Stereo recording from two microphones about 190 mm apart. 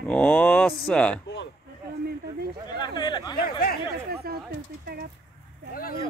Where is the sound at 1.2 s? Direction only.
70° left (ahead or behind).